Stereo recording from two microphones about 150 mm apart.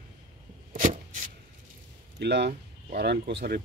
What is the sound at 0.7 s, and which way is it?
Chopping, 65° right (ahead or behind).